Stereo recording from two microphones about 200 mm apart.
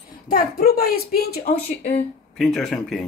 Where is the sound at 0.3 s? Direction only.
45° left (ahead or behind).